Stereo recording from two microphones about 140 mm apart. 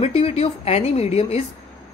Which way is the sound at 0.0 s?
50° left (ahead or behind).